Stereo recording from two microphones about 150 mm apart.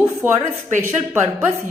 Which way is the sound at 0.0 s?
15° right (ahead or behind).